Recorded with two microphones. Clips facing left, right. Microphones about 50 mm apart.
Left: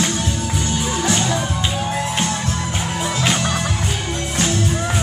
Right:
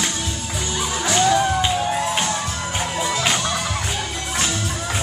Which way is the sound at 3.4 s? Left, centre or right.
Left.